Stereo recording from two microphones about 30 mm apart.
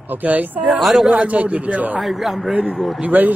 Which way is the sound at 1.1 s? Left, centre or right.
Right.